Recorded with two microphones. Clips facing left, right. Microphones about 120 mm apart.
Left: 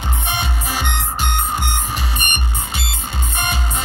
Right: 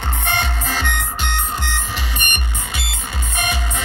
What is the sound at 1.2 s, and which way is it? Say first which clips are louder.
Music: left 3 dB; 45° left (ahead or behind).